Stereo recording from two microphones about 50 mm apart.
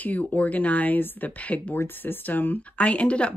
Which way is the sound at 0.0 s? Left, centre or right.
Left.